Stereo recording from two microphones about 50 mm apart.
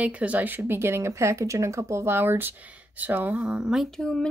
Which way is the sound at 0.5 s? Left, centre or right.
Right.